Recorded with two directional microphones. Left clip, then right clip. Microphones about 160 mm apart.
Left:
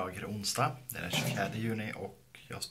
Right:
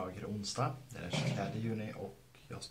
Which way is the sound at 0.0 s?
10° left (ahead or behind).